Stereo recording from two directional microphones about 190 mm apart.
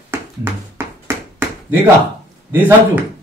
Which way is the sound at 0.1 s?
10° right (ahead or behind).